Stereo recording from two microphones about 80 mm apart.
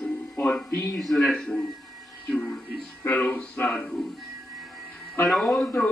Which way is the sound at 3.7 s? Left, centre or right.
Centre.